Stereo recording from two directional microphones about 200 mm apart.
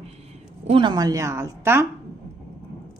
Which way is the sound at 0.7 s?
20° right (ahead or behind).